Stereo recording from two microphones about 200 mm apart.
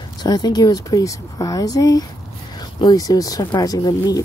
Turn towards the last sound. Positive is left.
turn(degrees=20)  # may be behind; listen again after turning